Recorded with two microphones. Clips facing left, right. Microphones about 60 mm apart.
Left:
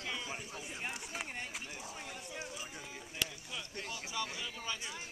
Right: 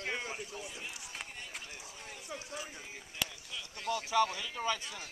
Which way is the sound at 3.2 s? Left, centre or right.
Centre.